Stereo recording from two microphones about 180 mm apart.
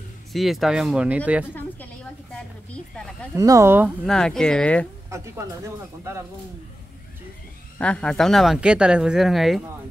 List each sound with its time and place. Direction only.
0.3 s speech: centre (ahead or behind)
2.7 s speech: 5° left (ahead or behind)
3.3 s speech: 20° right (ahead or behind)
4.0 s speech: centre (ahead or behind)
5.1 s speech: 15° right (ahead or behind)
7.8 s speech: 5° left (ahead or behind)